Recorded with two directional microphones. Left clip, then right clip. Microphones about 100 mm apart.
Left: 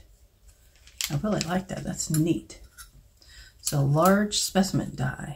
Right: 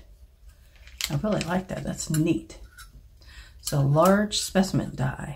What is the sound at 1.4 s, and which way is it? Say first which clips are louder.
Speech: right 1 dB; 30° right (ahead or behind).